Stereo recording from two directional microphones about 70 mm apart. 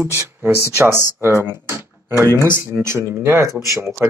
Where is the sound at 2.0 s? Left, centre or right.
Right.